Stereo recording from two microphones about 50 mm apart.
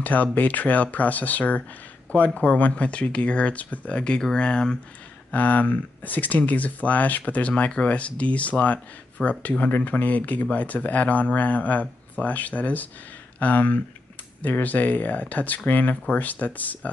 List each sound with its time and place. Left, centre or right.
0.0 s speech: left
4.2 s speech: centre
5.3 s speech: left